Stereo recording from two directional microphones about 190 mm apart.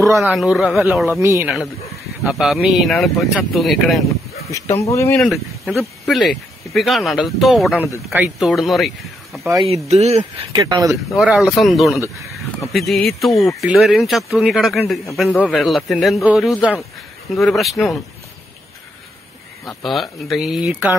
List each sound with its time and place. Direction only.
0.2 s speech: centre (ahead or behind)
1.2 s a man's voice: 15° right (ahead or behind)
2.2 s speech: centre (ahead or behind)
4.5 s speech: 15° left (ahead or behind)
5.3 s speech: centre (ahead or behind)
9.5 s speech: 30° right (ahead or behind)
10.6 s speech: 20° right (ahead or behind)
11.1 s speech: 5° right (ahead or behind)
19.6 s speech: centre (ahead or behind)